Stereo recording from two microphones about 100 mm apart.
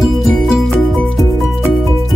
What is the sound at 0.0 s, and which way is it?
Music, centre (ahead or behind).